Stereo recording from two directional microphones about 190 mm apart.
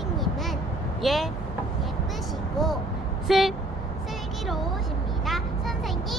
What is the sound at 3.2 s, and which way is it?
Vehicle, centre (ahead or behind).